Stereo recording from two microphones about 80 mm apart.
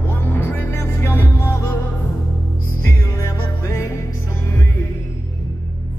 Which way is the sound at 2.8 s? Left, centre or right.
Left.